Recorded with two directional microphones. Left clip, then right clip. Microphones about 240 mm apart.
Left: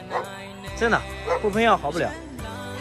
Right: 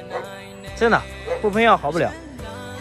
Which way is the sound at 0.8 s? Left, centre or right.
Centre.